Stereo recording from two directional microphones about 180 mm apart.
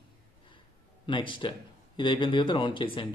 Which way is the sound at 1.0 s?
25° left (ahead or behind).